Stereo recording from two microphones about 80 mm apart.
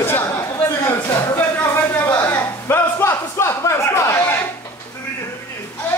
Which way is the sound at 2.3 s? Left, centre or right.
Left.